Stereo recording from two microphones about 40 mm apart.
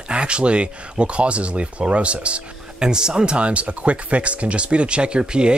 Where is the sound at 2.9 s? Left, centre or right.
Centre.